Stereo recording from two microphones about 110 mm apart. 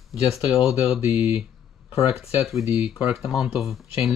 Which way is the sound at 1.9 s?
60° left (ahead or behind).